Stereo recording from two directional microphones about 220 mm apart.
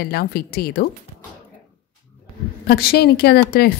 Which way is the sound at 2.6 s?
45° left (ahead or behind).